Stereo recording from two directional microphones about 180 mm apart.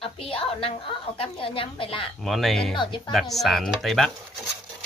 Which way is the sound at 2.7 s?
25° left (ahead or behind).